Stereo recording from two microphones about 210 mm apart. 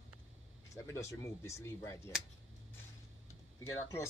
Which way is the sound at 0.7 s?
15° left (ahead or behind).